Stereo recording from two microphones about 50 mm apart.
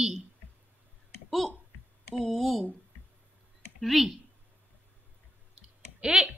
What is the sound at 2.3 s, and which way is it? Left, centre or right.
Speech, centre.